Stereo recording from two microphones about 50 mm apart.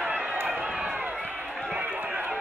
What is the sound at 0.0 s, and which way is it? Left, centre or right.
Run, right.